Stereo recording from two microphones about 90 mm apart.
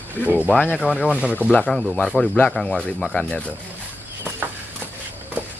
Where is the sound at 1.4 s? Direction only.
15° left (ahead or behind).